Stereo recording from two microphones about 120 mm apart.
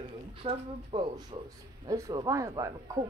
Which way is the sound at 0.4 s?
50° right (ahead or behind).